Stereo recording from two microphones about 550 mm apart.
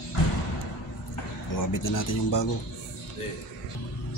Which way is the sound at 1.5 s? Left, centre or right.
Left.